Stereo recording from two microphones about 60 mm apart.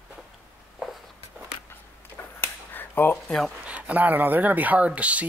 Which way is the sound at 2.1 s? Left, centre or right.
Left.